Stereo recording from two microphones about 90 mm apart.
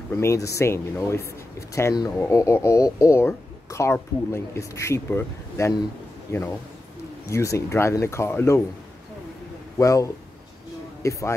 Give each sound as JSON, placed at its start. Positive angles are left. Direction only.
{"t": 0.1, "sound": "speech", "side_deg": 30}
{"t": 9.8, "sound": "speech", "side_deg": 35}